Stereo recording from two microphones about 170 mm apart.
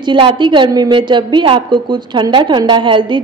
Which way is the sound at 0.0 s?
25° right (ahead or behind).